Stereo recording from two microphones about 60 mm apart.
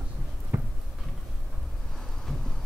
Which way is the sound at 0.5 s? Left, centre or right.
Right.